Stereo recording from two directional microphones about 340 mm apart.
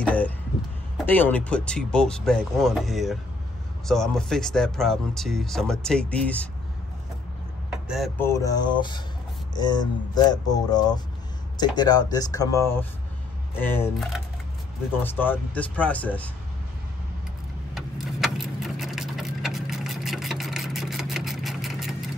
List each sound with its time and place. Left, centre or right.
0.0 s a sound: centre
0.9 s speech: centre
7.9 s speech: centre
17.7 s vehicle: centre